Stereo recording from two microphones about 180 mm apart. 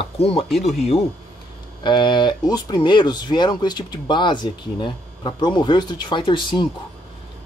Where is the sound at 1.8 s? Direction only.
25° left (ahead or behind).